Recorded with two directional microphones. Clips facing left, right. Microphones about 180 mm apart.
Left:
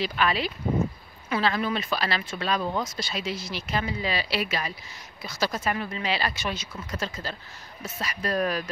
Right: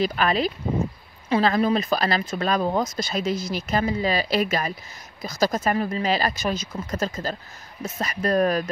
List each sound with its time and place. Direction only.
0.0 s speech: 45° right (ahead or behind)